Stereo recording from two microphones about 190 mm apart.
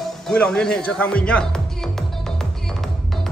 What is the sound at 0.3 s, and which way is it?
Speech, 5° left (ahead or behind).